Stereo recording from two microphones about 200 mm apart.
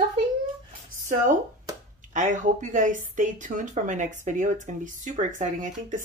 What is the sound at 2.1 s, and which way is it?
A woman's voice, 40° right (ahead or behind).